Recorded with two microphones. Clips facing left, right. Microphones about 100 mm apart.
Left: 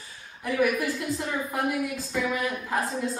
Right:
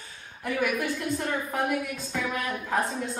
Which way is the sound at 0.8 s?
5° left (ahead or behind).